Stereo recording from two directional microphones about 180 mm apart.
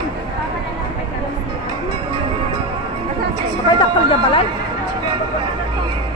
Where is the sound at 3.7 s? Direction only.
30° left (ahead or behind).